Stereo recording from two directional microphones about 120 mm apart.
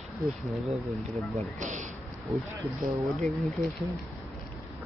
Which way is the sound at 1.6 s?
90° right.